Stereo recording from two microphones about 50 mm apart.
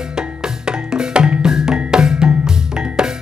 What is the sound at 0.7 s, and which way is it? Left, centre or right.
Music, centre.